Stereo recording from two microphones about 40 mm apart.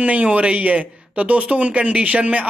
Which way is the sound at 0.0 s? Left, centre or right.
Right.